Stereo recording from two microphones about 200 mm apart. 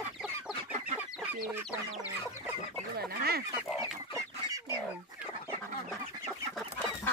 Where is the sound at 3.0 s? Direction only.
50° right (ahead or behind).